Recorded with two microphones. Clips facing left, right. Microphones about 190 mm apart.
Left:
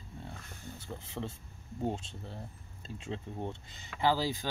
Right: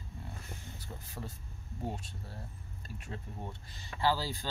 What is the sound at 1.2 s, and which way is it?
Speech, 50° left (ahead or behind).